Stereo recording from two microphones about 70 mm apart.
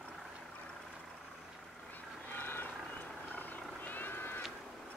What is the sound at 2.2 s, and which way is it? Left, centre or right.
Vehicle, left.